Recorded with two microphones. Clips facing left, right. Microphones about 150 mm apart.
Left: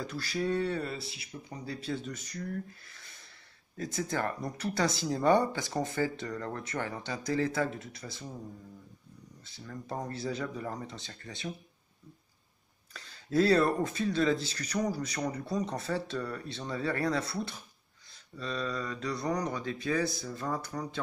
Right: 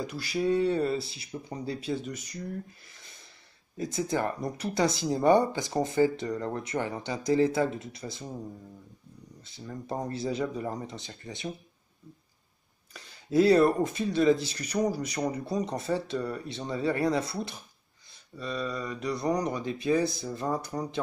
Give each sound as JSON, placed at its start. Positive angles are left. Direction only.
{"t": 0.0, "sound": "speech", "side_deg": -15}
{"t": 1.8, "sound": "speech", "side_deg": -15}
{"t": 9.4, "sound": "speech", "side_deg": -20}
{"t": 12.9, "sound": "speech", "side_deg": -15}